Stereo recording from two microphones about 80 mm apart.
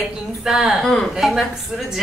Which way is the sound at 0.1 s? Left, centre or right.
Centre.